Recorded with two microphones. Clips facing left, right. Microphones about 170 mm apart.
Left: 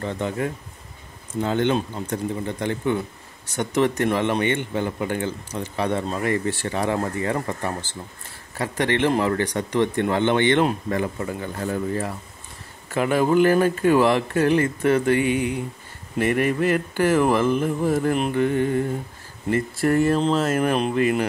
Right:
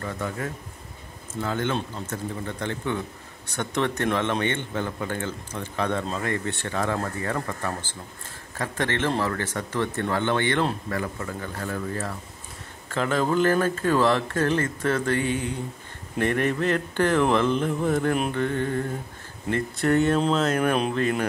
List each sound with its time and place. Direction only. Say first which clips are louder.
0.0 s speech: left 5 dB; 20° left (ahead or behind)
6.4 s speech: left 5 dB; 65° right (ahead or behind)
6.7 s speech: left 2 dB; 15° left (ahead or behind)
18.3 s speech: left 5 dB; 10° left (ahead or behind)